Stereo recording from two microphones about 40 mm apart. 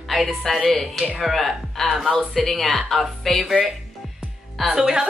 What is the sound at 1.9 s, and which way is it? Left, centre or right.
Speech, centre.